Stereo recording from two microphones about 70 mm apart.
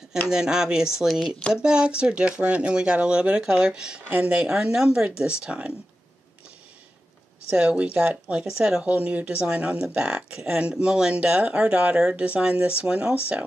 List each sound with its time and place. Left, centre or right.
0.3 s speech: centre
7.4 s speech: centre